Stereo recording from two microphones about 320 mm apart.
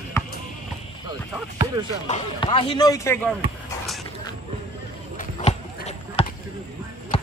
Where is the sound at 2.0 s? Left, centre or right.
Centre.